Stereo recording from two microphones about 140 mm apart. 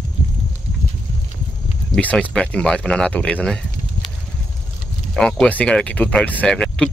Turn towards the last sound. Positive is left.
turn(degrees=5)  # may be behind; listen again after turning